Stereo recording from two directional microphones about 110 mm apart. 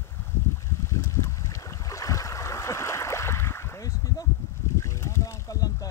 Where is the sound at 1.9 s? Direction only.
30° left (ahead or behind).